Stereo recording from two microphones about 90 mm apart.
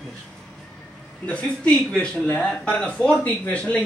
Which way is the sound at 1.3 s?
15° left (ahead or behind).